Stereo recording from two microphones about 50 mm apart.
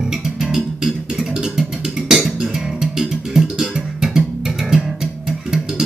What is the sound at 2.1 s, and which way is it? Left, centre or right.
Music, centre.